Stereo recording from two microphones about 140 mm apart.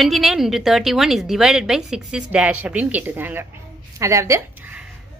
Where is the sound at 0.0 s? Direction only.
Centre (ahead or behind); by 4.7 s 20° right (ahead or behind).